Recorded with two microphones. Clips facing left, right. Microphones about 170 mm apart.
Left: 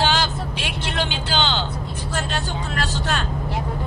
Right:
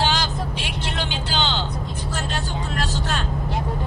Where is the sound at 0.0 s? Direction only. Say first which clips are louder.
Left 2 dB; 70° left (ahead or behind).